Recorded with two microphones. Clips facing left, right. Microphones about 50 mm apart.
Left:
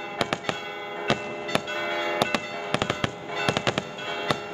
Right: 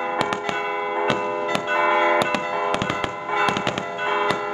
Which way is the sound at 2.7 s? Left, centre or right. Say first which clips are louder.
Right 3 dB; centre.